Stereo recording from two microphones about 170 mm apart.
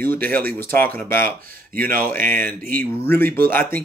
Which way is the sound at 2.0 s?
10° left (ahead or behind).